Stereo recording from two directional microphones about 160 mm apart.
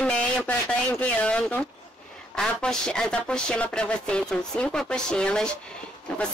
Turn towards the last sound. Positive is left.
turn(degrees=5)  # may be behind; listen again after turning